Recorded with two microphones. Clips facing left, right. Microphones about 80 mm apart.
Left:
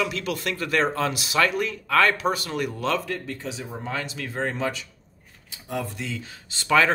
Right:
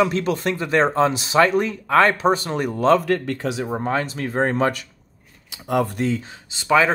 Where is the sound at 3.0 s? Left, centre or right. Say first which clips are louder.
Right 9 dB; right.